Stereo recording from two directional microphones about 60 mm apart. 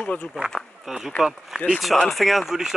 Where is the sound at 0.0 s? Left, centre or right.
Left.